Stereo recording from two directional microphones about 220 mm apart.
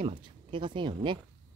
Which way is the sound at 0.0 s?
20° right (ahead or behind).